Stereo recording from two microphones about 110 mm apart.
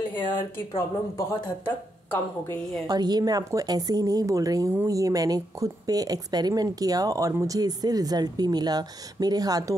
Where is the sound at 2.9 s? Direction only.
40° right (ahead or behind).